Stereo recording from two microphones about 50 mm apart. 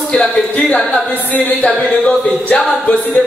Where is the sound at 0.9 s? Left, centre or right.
Left.